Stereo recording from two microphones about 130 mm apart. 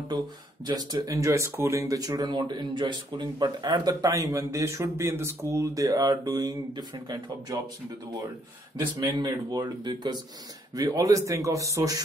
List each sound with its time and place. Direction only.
0.7 s speech: 30° right (ahead or behind)
9.1 s speech: 30° right (ahead or behind)